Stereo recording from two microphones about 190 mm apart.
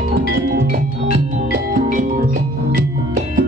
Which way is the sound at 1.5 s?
45° right (ahead or behind).